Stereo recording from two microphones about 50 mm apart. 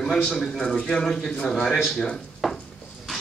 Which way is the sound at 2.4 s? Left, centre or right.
Centre.